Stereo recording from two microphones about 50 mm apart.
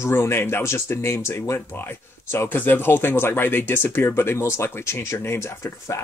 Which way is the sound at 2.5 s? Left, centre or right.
Left.